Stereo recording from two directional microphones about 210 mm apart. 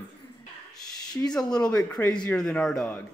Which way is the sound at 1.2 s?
5° left (ahead or behind).